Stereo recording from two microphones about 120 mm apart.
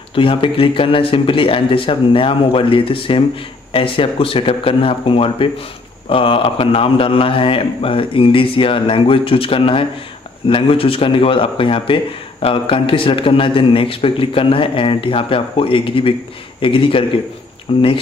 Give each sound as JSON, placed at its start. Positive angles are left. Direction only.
{"t": 0.1, "sound": "a man's voice", "side_deg": 50}